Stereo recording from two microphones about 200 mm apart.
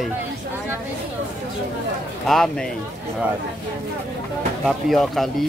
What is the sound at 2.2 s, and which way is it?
Speech, centre (ahead or behind).